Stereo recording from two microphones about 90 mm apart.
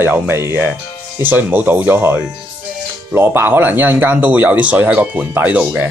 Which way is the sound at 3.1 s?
25° right (ahead or behind).